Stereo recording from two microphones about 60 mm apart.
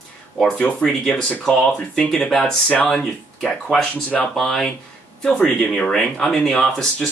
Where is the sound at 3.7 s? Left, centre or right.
Centre.